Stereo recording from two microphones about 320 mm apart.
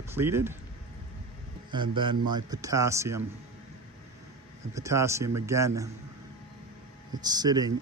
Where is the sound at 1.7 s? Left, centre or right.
Centre.